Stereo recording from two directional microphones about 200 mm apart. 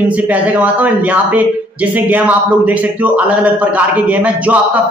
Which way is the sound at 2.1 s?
10° right (ahead or behind).